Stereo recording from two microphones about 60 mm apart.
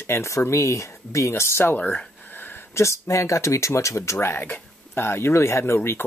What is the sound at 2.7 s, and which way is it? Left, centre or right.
Speech, left.